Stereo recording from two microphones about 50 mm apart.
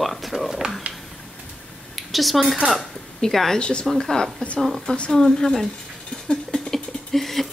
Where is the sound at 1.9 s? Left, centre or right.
Centre.